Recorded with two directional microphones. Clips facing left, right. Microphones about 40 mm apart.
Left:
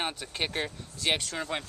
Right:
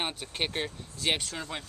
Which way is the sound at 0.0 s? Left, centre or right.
Centre.